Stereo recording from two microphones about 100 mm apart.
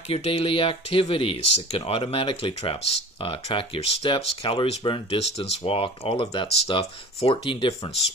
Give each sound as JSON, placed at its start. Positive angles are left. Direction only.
{"t": 0.1, "sound": "speech", "side_deg": 70}
{"t": 5.4, "sound": "speech", "side_deg": 70}
{"t": 6.4, "sound": "speech", "side_deg": 90}